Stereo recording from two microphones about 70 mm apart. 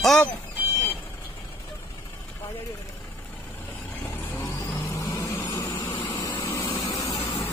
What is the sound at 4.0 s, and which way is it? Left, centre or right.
Vehicle, left.